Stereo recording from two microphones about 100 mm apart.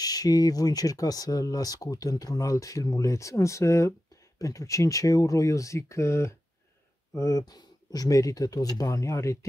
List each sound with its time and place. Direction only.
0.0 s speech: 40° left (ahead or behind)